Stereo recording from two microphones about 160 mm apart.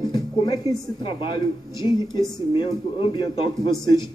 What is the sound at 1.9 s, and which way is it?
Speech, 30° left (ahead or behind).